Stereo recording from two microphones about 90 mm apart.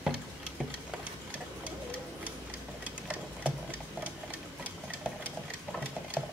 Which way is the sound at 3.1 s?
15° right (ahead or behind).